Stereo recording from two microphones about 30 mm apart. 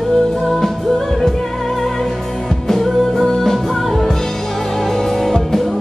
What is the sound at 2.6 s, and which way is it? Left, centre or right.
Music, centre.